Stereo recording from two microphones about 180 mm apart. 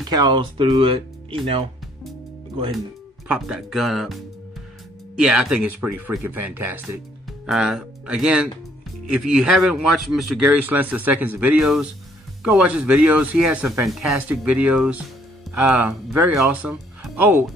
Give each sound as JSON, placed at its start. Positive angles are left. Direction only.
{"t": 0.1, "sound": "speech", "side_deg": -25}
{"t": 3.3, "sound": "speech", "side_deg": -5}
{"t": 5.2, "sound": "speech", "side_deg": -5}